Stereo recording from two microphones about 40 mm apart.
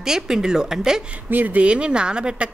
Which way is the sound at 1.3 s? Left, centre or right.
Right.